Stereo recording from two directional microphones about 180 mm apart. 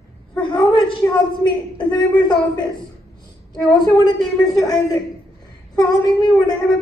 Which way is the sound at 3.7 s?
20° left (ahead or behind).